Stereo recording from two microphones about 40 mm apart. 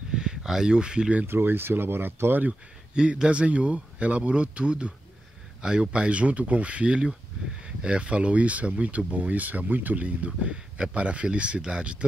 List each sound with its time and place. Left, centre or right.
0.1 s speech: centre
1.2 s speech: right
2.9 s a man's voice: right
10.0 s speech: right